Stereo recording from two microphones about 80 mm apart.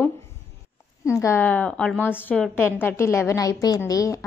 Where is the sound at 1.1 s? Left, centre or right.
Left.